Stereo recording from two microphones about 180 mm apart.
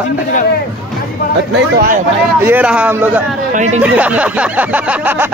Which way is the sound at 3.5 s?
40° right (ahead or behind).